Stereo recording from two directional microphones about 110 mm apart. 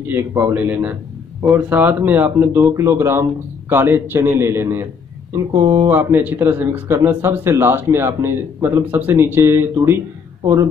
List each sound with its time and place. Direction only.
0.1 s speech: 20° right (ahead or behind)